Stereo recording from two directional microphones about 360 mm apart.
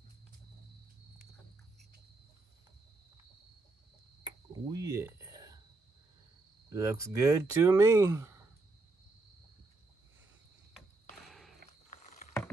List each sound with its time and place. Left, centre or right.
4.5 s cricket: centre
6.7 s speech: centre
11.2 s a sound: centre
11.9 s vehicle: centre